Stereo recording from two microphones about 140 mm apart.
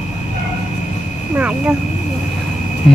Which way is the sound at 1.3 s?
10° right (ahead or behind).